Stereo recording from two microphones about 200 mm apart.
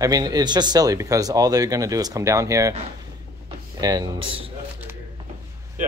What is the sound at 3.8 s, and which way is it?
Speech, 20° right (ahead or behind).